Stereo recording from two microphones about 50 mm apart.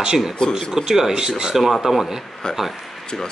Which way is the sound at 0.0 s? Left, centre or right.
Centre.